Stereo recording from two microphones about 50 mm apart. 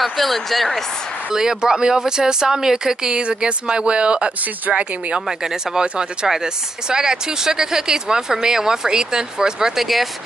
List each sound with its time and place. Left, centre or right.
0.0 s speech: centre
1.3 s speech: centre
5.4 s speech: centre